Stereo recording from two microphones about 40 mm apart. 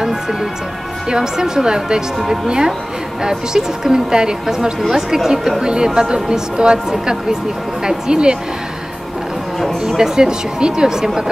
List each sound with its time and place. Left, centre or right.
0.0 s music: centre
1.0 s a woman's voice: centre
9.8 s speech: centre